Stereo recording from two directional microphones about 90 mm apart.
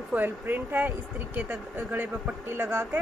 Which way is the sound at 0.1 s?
20° right (ahead or behind).